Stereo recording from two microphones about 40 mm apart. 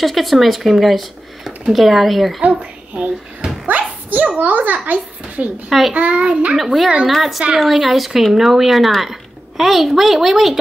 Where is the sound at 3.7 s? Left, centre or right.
Right.